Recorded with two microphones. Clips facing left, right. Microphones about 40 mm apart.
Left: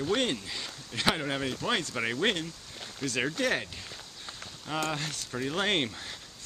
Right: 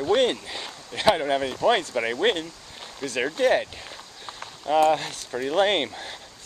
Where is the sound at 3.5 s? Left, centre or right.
Centre.